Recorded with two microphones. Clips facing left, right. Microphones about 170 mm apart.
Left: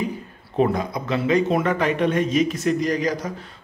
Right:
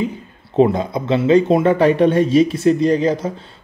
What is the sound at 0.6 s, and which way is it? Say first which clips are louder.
Speech: right 6 dB; 25° right (ahead or behind).